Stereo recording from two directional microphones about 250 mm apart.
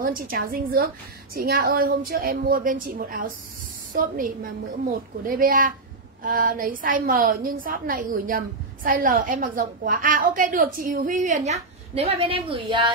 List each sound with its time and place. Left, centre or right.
0.0 s a woman's voice: right; by 12.9 s centre